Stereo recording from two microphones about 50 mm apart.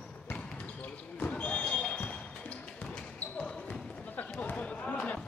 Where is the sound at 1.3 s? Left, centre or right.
Left.